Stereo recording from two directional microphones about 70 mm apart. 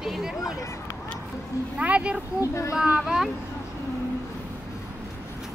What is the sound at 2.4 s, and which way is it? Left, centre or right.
Speech, left.